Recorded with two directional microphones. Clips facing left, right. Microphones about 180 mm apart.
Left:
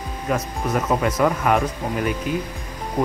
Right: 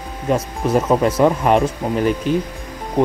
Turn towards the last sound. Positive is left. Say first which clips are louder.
# right 5 dB
turn(degrees=-25)  # may be behind; listen again after turning